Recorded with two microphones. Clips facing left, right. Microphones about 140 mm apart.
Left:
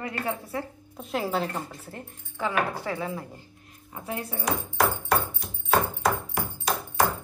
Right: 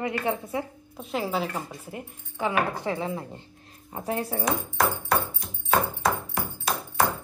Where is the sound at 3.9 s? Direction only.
35° right (ahead or behind).